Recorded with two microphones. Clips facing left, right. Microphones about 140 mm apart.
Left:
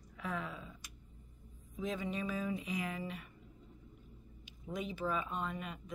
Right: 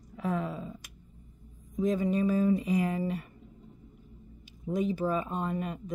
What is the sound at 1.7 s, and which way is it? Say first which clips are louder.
Speech: right 11 dB; 40° right (ahead or behind).